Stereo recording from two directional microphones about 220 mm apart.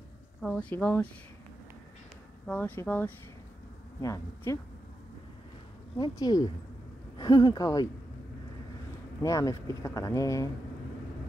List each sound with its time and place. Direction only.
0.4 s speech: 5° left (ahead or behind)
2.4 s speech: 5° left (ahead or behind)
5.9 s speech: 20° left (ahead or behind)
9.2 s speech: 15° left (ahead or behind)